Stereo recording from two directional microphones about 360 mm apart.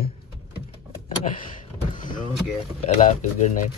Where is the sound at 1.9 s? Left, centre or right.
Left.